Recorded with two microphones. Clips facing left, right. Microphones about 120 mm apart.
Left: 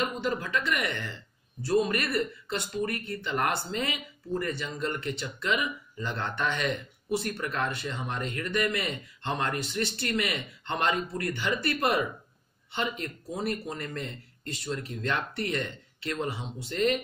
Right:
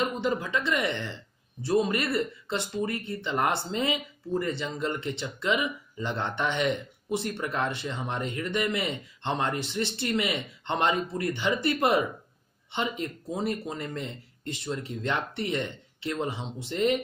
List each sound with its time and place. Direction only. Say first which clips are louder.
0.2 s a man's voice: right 2 dB; 20° right (ahead or behind)